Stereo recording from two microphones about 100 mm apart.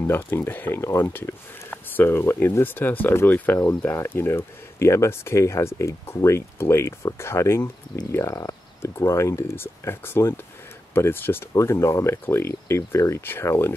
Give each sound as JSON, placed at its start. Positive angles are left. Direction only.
{"t": 0.0, "sound": "speech", "side_deg": 20}